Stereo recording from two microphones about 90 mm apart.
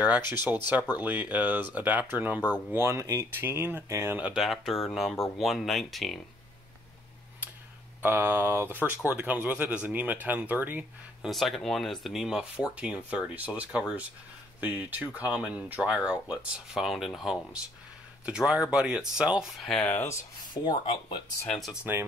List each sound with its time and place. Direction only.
0.9 s speech: 20° right (ahead or behind)
3.4 s speech: 25° right (ahead or behind)
4.4 s speech: centre (ahead or behind)
8.0 s speech: 20° right (ahead or behind)
11.2 s speech: centre (ahead or behind)
19.5 s speech: 5° left (ahead or behind)
19.9 s speech: 30° left (ahead or behind)
20.6 s speech: 65° left (ahead or behind)
21.9 s speech: 20° right (ahead or behind)